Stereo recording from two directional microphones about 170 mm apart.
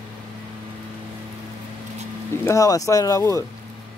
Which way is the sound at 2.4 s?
20° left (ahead or behind).